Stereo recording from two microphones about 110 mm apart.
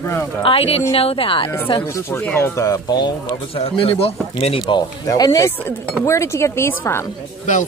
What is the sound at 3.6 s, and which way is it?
Speech, 60° left (ahead or behind).